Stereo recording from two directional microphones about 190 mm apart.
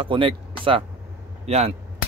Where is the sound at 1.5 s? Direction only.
35° right (ahead or behind).